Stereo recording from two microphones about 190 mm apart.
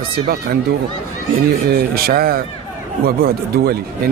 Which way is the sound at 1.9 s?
55° right (ahead or behind).